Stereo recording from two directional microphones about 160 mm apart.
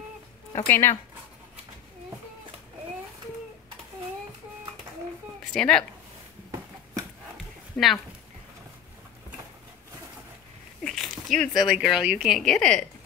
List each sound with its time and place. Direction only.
0.7 s speech: 15° left (ahead or behind)
5.5 s a woman's voice: 5° left (ahead or behind)
7.7 s speech: centre (ahead or behind)
10.8 s speech: centre (ahead or behind)